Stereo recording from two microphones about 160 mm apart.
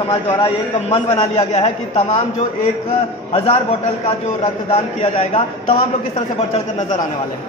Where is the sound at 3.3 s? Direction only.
35° left (ahead or behind).